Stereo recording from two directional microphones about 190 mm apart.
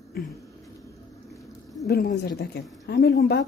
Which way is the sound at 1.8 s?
55° left (ahead or behind).